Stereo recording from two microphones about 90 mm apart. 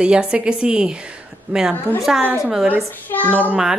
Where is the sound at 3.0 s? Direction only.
20° left (ahead or behind).